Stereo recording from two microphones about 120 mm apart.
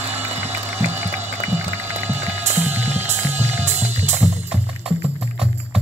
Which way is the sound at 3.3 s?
70° right (ahead or behind).